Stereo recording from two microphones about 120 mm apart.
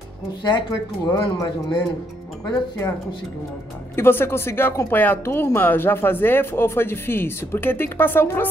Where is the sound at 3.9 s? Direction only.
20° left (ahead or behind).